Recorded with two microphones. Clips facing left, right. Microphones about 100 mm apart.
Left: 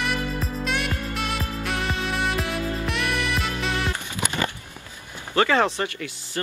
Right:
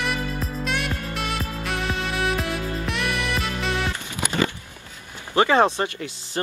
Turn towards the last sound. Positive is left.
turn(degrees=-20)  # may be behind; listen again after turning